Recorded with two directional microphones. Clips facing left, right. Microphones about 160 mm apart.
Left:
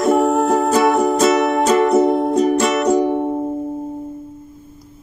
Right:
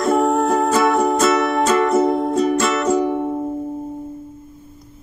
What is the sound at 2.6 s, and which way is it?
Music, 15° left (ahead or behind).